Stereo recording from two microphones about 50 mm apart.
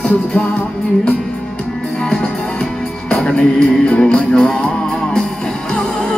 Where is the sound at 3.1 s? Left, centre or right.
Left.